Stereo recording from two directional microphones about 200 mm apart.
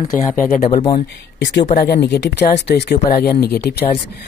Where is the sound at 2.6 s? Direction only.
55° left (ahead or behind).